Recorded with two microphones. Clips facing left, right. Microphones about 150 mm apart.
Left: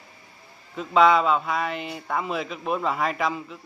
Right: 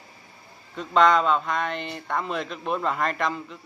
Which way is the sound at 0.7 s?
5° left (ahead or behind).